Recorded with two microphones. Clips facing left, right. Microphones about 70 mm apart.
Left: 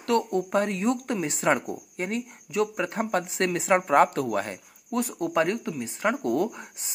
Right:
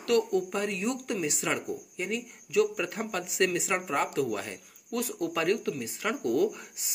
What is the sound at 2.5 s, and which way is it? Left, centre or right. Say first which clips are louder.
A man's voice: left 1 dB; left.